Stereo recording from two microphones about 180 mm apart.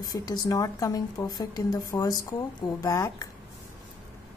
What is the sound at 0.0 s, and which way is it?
A woman's voice, 20° left (ahead or behind).